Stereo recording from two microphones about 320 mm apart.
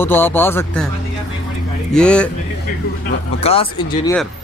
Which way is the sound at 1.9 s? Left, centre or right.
Centre.